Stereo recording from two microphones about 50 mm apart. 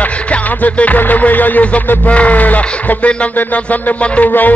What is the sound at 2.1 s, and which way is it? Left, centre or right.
Speech, left.